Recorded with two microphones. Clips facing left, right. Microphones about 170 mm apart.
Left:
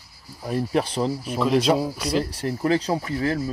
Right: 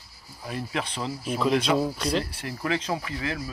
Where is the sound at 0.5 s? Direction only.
40° left (ahead or behind).